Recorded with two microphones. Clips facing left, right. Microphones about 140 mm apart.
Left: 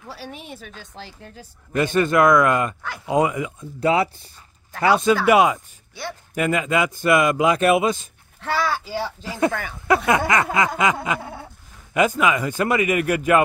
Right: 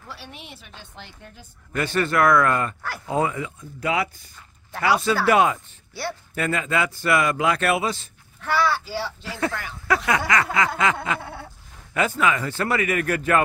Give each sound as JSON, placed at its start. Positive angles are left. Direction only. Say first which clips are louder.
{"t": 0.1, "sound": "a woman's voice", "louder": "left 5 dB", "side_deg": 40}
{"t": 1.2, "sound": "speech", "louder": "left 4 dB", "side_deg": 30}
{"t": 1.8, "sound": "a man's voice", "louder": "left 4 dB", "side_deg": 20}
{"t": 3.8, "sound": "a sound", "louder": "left 5 dB", "side_deg": 30}
{"t": 4.8, "sound": "a man's voice", "louder": "left 3 dB", "side_deg": 20}
{"t": 8.4, "sound": "speech", "louder": "right 1 dB", "side_deg": 35}
{"t": 9.2, "sound": "a man's voice", "louder": "left 7 dB", "side_deg": 20}
{"t": 10.0, "sound": "a sound", "louder": "left 3 dB", "side_deg": 20}
{"t": 11.9, "sound": "a man's voice", "louder": "left 3 dB", "side_deg": 15}